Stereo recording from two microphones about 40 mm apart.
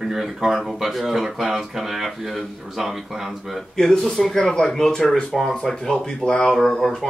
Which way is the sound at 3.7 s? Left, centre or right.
Centre.